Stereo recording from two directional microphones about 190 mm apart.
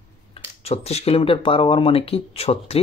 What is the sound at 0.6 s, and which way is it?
Speech, 35° left (ahead or behind).